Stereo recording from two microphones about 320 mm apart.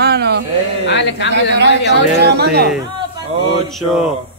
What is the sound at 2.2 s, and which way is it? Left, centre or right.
Speech, right.